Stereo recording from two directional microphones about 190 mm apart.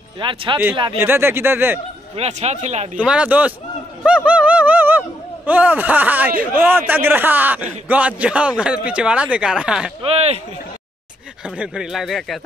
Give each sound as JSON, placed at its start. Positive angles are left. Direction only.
{"t": 0.2, "sound": "speech", "side_deg": -25}
{"t": 0.9, "sound": "a man's voice", "side_deg": -10}
{"t": 2.1, "sound": "speech", "side_deg": -35}
{"t": 3.0, "sound": "a man's voice", "side_deg": -5}
{"t": 4.0, "sound": "a sound", "side_deg": -5}
{"t": 6.9, "sound": "a man's voice", "side_deg": -10}
{"t": 10.0, "sound": "speech", "side_deg": -35}
{"t": 11.4, "sound": "speech", "side_deg": -5}